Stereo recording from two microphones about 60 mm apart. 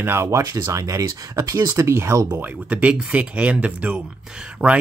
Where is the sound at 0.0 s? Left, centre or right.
Right.